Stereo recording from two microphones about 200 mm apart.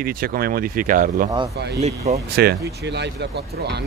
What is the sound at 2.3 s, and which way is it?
Speech, 55° right (ahead or behind).